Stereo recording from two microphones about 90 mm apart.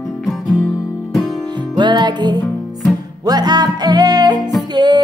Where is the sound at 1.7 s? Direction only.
55° right (ahead or behind).